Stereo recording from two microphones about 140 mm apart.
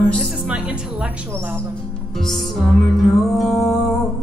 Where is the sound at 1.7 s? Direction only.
5° left (ahead or behind).